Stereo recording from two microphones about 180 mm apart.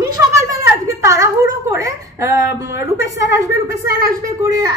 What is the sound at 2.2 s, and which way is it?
A woman's voice, 15° right (ahead or behind).